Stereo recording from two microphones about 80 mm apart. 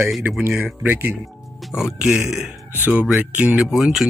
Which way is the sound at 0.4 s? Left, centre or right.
Right.